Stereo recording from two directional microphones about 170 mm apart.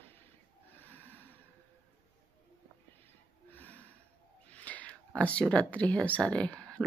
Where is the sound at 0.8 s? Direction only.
10° left (ahead or behind).